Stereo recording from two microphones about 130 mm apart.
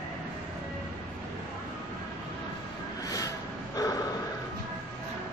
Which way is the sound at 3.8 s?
25° left (ahead or behind).